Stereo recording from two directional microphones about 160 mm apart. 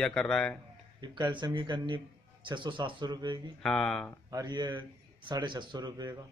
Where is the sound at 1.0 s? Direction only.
30° right (ahead or behind).